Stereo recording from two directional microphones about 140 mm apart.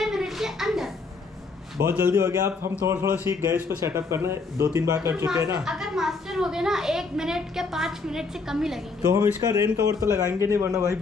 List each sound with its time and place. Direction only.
0.0 s a sound: centre (ahead or behind)
1.8 s speech: 20° right (ahead or behind)
5.6 s a woman's voice: 5° right (ahead or behind)
9.0 s speech: 25° right (ahead or behind)